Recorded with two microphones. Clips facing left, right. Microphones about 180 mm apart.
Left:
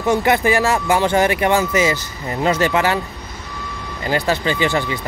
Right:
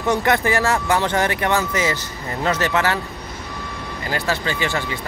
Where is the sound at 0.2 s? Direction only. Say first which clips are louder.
Left 3 dB; 15° left (ahead or behind).